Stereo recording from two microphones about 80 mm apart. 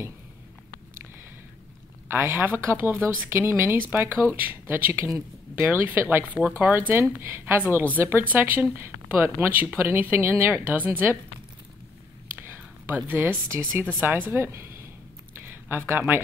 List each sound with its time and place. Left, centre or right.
2.0 s speech: right
12.4 s speech: right
15.4 s a sound: right